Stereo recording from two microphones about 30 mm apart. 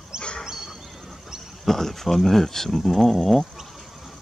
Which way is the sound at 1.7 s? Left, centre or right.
Centre.